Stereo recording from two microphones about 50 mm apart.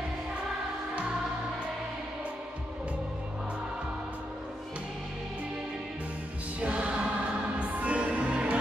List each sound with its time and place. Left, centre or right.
6.6 s music: right